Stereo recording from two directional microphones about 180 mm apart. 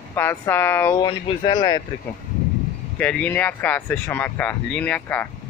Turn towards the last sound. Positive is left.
turn(degrees=10)  # may be behind; listen again after turning